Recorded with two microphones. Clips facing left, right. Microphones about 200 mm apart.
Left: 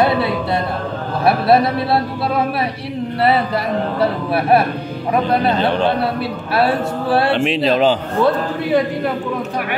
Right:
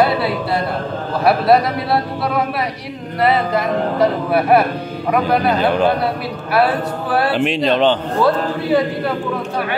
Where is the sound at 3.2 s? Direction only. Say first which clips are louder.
Right 1 dB; 30° left (ahead or behind).